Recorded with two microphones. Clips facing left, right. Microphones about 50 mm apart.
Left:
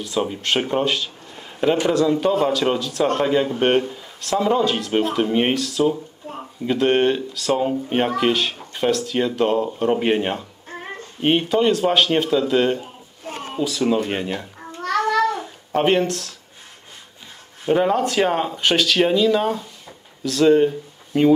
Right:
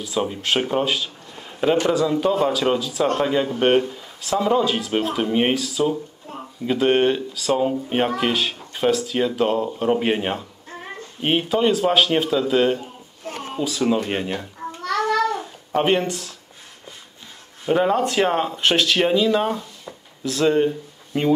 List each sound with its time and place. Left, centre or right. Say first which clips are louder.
0.0 s speech: left 1 dB; centre
13.3 s a sound: even; left
13.6 s speech: left 1 dB; centre
15.7 s speech: left 1 dB; centre
17.6 s speech: left 1 dB; centre